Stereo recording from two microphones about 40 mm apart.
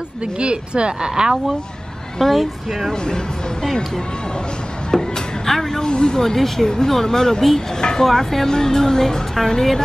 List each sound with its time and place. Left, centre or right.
0.2 s speech: right
2.1 s a woman's voice: centre
2.9 s speech: centre
4.9 s music: centre
5.9 s speech: left